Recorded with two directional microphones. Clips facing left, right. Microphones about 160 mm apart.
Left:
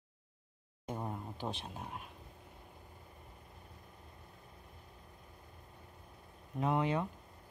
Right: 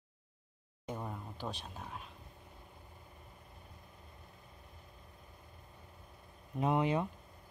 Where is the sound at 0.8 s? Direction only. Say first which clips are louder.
Left 1 dB; 15° left (ahead or behind).